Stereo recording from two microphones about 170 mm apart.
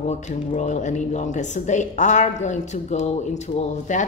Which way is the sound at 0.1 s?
40° left (ahead or behind).